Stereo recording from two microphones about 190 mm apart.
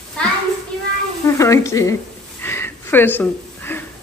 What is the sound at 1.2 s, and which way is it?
Speech, 15° left (ahead or behind).